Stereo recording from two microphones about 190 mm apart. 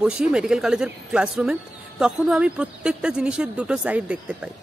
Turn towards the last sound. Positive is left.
turn(degrees=-5)  # may be behind; listen again after turning